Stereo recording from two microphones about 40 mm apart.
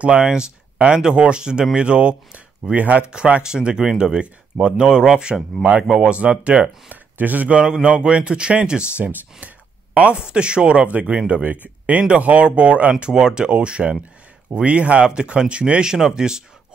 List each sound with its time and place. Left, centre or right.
0.0 s speech: right
3.4 s speech: centre
6.6 s speech: right
7.6 s speech: centre
10.1 s speech: right
10.9 s speech: right
13.0 s speech: centre
15.9 s speech: centre